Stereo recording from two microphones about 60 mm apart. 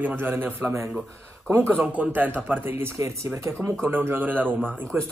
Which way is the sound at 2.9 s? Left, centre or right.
Right.